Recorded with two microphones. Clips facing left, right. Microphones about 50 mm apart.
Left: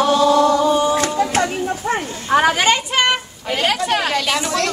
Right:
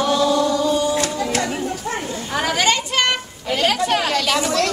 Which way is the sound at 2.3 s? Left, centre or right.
Left.